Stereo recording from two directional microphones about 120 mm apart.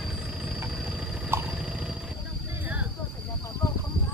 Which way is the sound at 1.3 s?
20° right (ahead or behind).